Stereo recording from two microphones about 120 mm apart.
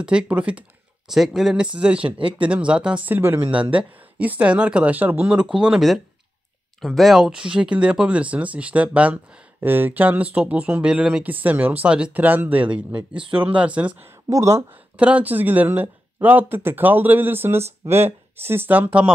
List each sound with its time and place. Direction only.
0.0 s speech: 10° right (ahead or behind)
2.0 s speech: 45° right (ahead or behind)
2.4 s speech: 10° right (ahead or behind)
14.3 s speech: 25° right (ahead or behind)
15.0 s speech: 10° right (ahead or behind)